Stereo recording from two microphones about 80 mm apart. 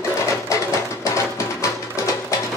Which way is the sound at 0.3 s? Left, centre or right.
Left.